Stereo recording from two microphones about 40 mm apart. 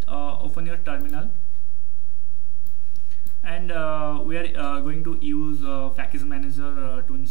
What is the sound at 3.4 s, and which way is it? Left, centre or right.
Speech, centre.